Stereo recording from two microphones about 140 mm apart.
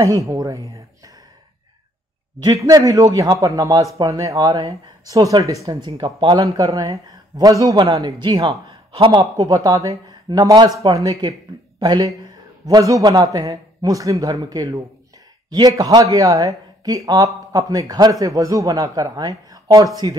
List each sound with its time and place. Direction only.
0.0 s speech: 20° right (ahead or behind)
2.4 s speech: 25° right (ahead or behind)
9.2 s a man's voice: 25° right (ahead or behind)